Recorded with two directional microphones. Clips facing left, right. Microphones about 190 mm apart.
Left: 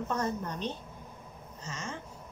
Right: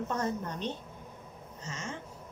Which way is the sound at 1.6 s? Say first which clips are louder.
Even; 20° right (ahead or behind).